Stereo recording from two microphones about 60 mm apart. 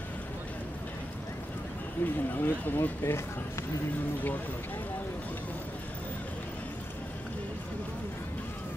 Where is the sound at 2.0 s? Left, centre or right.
Left.